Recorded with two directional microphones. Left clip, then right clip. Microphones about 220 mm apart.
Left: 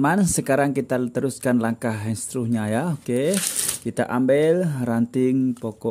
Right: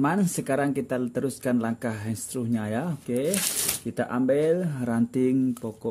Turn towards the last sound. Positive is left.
turn(degrees=15)  # may be behind; listen again after turning